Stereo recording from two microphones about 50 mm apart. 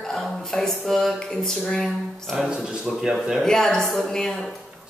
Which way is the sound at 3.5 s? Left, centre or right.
Centre.